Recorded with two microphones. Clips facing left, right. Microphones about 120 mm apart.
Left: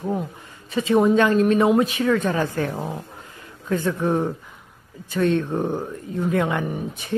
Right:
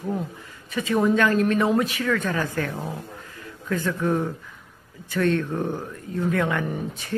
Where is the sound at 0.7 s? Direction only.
25° left (ahead or behind).